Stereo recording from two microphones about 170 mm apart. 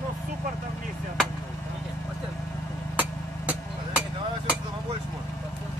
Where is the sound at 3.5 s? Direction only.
5° right (ahead or behind).